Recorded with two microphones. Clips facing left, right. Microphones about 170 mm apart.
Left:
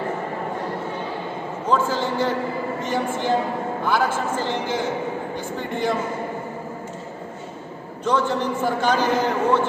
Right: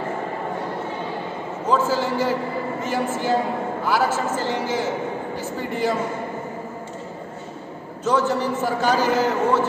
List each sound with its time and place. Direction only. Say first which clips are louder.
1.7 s a man's voice: right 1 dB; 10° right (ahead or behind)
4.5 s a man's voice: right 1 dB; 5° right (ahead or behind)
8.0 s a man's voice: right 1 dB; 5° right (ahead or behind)